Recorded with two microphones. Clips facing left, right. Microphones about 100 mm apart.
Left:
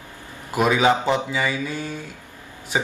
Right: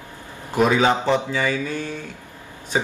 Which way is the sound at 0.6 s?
15° left (ahead or behind).